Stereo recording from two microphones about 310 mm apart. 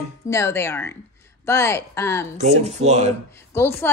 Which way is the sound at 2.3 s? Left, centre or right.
Right.